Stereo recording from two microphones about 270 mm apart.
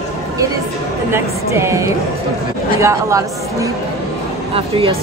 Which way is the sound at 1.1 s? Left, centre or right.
Centre.